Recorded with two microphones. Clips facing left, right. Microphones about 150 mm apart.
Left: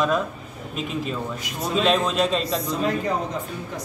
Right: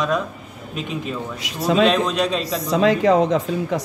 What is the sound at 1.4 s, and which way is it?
Speech, 90° right.